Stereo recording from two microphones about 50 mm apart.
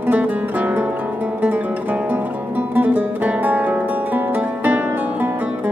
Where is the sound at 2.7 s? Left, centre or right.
Right.